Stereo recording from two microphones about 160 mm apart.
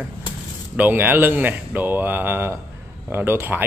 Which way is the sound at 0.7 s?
10° right (ahead or behind).